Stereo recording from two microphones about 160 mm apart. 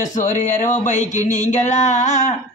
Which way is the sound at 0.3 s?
50° left (ahead or behind).